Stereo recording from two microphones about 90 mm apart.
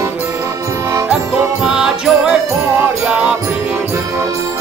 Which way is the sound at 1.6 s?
5° right (ahead or behind).